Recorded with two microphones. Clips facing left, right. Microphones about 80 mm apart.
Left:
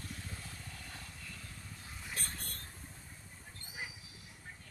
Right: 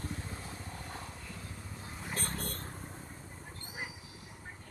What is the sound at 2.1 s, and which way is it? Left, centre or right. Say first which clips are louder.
Vehicle: right 6 dB; right.